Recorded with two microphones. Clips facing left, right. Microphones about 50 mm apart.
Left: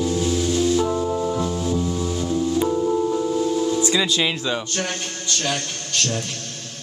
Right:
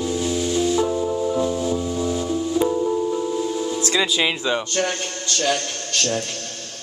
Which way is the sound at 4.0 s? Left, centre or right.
Centre.